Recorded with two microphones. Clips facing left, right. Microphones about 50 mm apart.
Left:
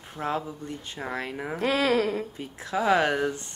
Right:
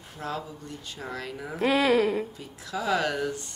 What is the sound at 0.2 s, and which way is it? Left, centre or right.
Speech, left.